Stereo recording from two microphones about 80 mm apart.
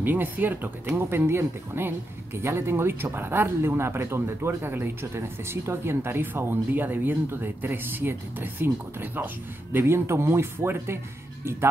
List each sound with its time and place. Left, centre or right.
0.0 s speech: right